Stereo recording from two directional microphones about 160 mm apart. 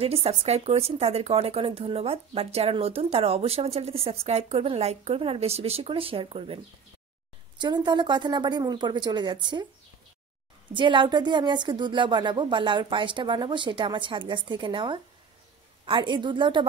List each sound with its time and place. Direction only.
0.0 s a woman's voice: 40° right (ahead or behind)
10.7 s a woman's voice: 30° right (ahead or behind)